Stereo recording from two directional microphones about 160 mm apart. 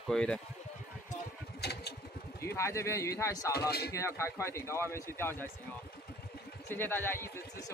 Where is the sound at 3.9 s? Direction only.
20° left (ahead or behind).